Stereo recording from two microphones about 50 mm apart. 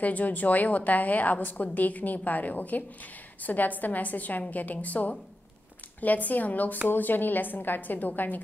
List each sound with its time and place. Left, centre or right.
0.0 s a woman's voice: left